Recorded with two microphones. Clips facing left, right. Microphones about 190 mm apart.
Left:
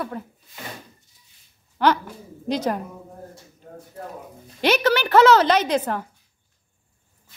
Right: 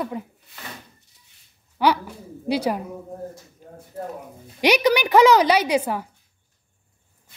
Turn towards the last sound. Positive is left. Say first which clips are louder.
# right 1 dB
turn(degrees=-10)  # may be behind; listen again after turning